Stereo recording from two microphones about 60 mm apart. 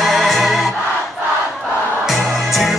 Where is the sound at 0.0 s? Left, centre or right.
Centre.